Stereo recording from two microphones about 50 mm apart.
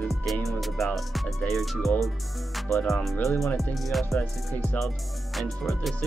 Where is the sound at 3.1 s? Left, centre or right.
Left.